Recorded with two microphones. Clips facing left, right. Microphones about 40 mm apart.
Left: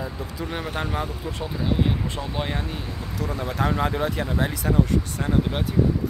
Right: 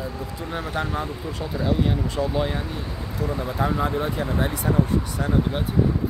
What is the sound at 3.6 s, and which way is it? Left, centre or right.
Speech, left.